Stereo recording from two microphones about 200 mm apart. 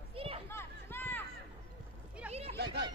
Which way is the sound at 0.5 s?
10° left (ahead or behind).